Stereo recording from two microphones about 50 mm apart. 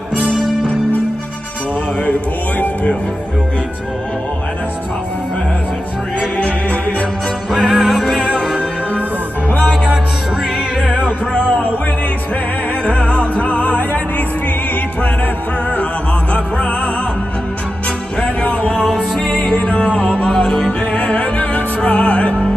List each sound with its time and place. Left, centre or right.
0.2 s music: centre
6.3 s music: left
7.5 s music: centre
11.3 s music: centre
12.8 s music: left
16.3 s music: left
18.9 s music: centre
19.5 s music: centre
20.9 s music: left